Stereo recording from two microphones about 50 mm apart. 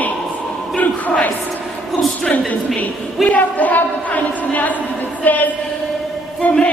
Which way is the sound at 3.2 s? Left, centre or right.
Left.